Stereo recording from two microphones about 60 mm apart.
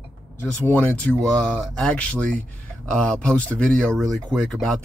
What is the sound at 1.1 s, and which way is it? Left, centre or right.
Speech, centre.